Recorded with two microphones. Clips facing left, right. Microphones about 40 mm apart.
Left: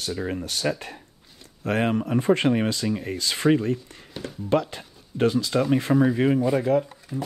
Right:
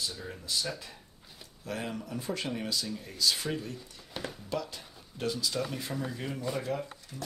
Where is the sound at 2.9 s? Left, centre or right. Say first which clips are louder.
Left 13 dB; left.